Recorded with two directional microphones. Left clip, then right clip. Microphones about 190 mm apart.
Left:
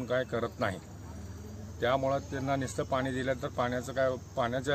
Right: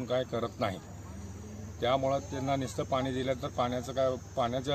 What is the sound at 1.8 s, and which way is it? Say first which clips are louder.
Speech: even; 5° left (ahead or behind).